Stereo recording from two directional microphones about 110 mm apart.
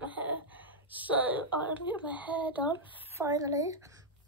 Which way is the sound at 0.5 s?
15° right (ahead or behind).